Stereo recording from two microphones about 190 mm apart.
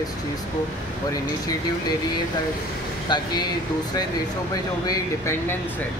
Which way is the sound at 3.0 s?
20° left (ahead or behind).